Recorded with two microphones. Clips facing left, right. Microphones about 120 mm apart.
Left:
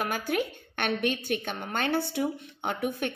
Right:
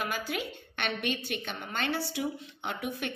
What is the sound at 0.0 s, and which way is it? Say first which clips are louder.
A woman's voice: left 5 dB; 50° left (ahead or behind).